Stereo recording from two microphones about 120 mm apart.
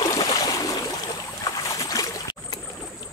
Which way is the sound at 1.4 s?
30° left (ahead or behind).